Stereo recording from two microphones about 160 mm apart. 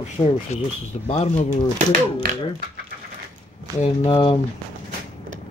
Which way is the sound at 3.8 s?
35° left (ahead or behind).